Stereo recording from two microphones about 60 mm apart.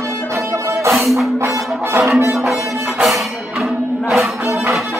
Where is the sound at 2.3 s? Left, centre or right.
Centre.